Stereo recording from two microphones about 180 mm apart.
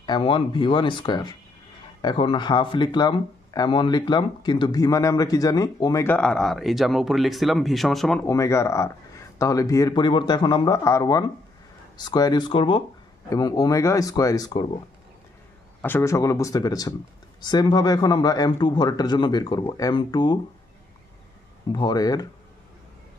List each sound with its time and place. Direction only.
0.0 s speech: 25° left (ahead or behind); by 8.3 s 5° left (ahead or behind)
8.3 s speech: 15° left (ahead or behind)
15.8 s speech: 15° left (ahead or behind)
21.7 s speech: 20° left (ahead or behind)